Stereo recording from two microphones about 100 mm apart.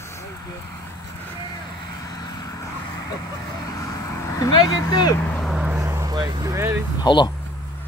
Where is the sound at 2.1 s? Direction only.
40° left (ahead or behind).